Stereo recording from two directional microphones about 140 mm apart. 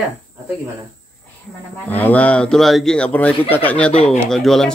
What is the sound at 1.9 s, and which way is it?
Speech, 10° left (ahead or behind).